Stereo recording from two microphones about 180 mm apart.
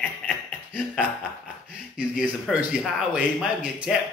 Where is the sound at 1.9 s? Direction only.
5° right (ahead or behind).